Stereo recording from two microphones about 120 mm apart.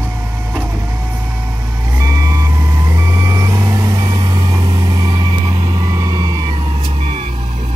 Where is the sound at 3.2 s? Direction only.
25° right (ahead or behind).